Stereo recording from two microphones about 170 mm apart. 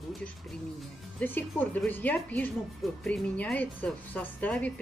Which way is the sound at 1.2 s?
10° left (ahead or behind).